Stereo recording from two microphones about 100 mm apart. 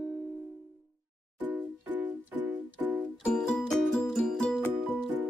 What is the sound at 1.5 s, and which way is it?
Music, 20° right (ahead or behind).